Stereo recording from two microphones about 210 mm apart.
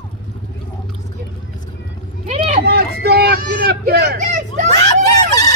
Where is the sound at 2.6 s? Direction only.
50° right (ahead or behind).